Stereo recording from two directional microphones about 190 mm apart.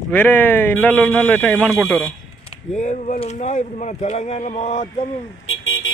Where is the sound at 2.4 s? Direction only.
40° left (ahead or behind).